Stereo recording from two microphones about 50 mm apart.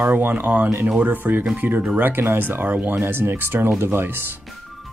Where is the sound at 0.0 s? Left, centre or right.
Right.